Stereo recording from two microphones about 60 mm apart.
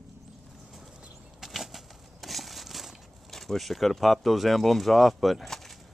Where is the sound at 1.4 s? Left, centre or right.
Centre.